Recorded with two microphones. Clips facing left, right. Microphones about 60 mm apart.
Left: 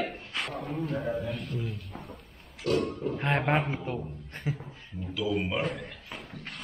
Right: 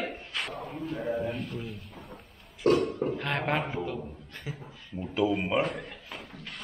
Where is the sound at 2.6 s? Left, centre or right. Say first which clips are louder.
Right 4 dB; right.